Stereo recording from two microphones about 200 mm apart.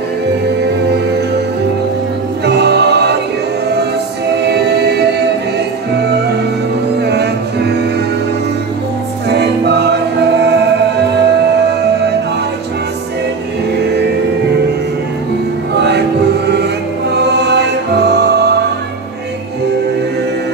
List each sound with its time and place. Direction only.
2.4 s music: 55° right (ahead or behind)
4.5 s music: 55° right (ahead or behind)
7.0 s music: 55° right (ahead or behind)
9.3 s music: 55° right (ahead or behind)
17.1 s music: 55° right (ahead or behind)